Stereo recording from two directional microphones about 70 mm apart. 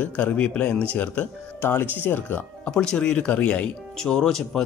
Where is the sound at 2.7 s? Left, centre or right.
Centre.